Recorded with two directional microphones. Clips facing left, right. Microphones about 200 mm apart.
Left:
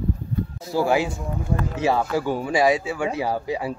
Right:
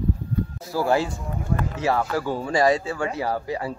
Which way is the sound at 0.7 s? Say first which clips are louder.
Left 1 dB; 10° left (ahead or behind).